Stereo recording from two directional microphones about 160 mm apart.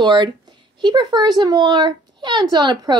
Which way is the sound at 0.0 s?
30° right (ahead or behind).